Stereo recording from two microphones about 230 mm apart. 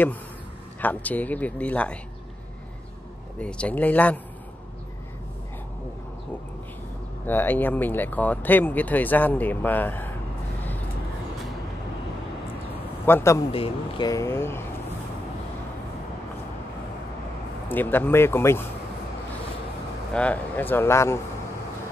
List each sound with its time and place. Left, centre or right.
0.7 s speech: centre
3.3 s speech: centre
7.2 s speech: centre
13.0 s speech: centre
13.5 s speech: left
17.6 s speech: centre
20.2 s speech: centre